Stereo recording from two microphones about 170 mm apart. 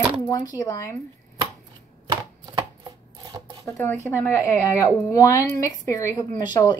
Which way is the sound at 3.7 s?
10° left (ahead or behind).